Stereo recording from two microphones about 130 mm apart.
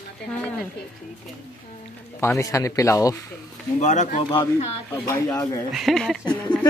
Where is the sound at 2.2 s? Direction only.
25° left (ahead or behind).